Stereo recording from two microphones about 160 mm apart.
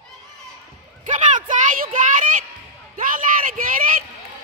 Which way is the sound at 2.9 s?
60° right (ahead or behind).